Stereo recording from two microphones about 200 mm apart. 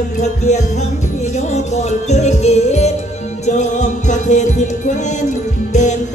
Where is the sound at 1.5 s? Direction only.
35° left (ahead or behind).